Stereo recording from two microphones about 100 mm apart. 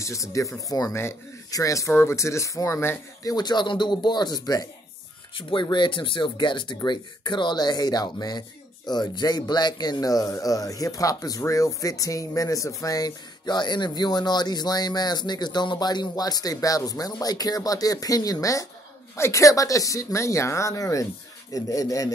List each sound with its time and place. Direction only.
0.0 s speech: 30° left (ahead or behind)
3.3 s speech: 45° left (ahead or behind)
5.3 s speech: 55° left (ahead or behind); by 22.1 s 35° left (ahead or behind)